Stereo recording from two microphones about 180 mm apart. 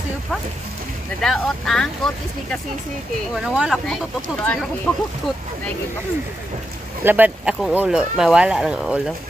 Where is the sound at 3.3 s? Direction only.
5° right (ahead or behind).